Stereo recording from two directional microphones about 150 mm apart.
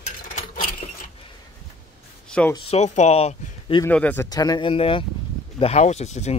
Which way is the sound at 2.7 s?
45° left (ahead or behind).